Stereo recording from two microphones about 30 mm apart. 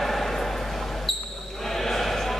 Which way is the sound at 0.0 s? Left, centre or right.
Centre.